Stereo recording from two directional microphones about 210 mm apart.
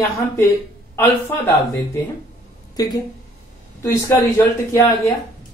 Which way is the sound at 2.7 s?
20° left (ahead or behind).